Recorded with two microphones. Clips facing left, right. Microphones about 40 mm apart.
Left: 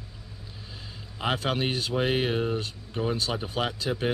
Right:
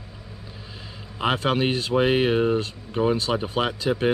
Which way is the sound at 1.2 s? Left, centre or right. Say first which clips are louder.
Right 5 dB; centre.